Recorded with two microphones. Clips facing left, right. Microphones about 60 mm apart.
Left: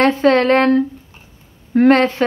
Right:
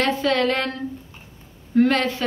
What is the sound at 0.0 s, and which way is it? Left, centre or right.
Speech, left.